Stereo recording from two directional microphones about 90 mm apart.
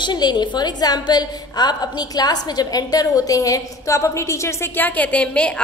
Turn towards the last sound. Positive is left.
turn(degrees=10)  # may be behind; listen again after turning